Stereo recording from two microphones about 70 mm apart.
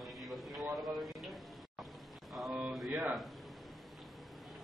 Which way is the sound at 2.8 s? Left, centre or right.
Right.